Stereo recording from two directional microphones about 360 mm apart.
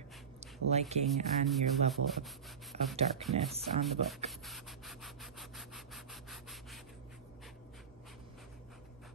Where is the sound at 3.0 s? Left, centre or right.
Right.